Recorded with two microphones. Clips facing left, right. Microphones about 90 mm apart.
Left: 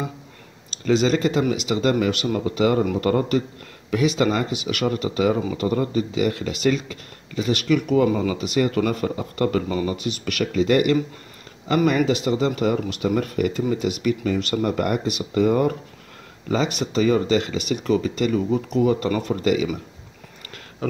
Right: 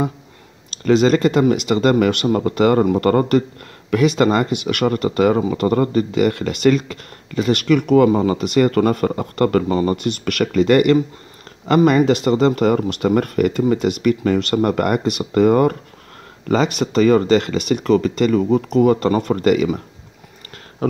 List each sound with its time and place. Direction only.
0.7 s speech: 55° right (ahead or behind)
8.1 s speech: 35° right (ahead or behind)
8.4 s speech: 60° right (ahead or behind)